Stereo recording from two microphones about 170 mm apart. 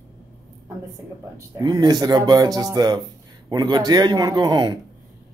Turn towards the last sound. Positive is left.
turn(degrees=-25)  # may be behind; listen again after turning